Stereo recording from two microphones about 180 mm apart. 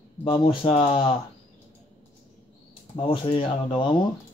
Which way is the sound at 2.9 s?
30° left (ahead or behind).